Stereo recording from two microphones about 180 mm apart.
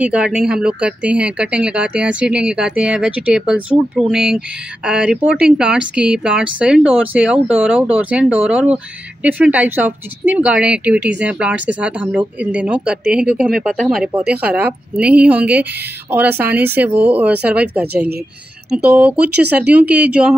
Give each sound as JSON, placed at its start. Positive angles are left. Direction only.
{"t": 0.0, "sound": "speech", "side_deg": -5}
{"t": 18.9, "sound": "speech", "side_deg": -5}